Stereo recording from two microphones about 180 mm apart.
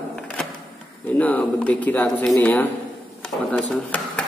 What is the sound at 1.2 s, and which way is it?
Speech, 10° left (ahead or behind).